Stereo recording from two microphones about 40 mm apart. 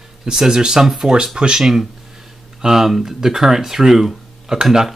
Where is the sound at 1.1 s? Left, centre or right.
Centre.